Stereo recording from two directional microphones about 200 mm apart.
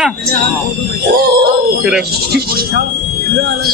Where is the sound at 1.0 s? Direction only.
50° right (ahead or behind).